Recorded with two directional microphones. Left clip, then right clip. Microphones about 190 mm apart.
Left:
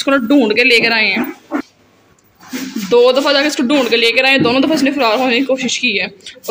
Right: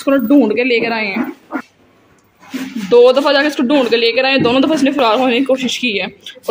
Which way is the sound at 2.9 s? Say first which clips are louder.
Right 2 dB; 20° right (ahead or behind).